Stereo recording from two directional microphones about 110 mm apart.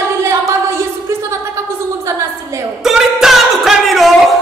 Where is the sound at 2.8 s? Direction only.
5° right (ahead or behind).